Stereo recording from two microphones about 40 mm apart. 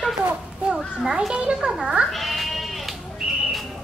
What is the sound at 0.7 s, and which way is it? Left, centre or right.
Speech, centre.